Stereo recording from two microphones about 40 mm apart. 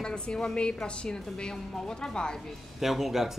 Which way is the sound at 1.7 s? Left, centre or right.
Centre.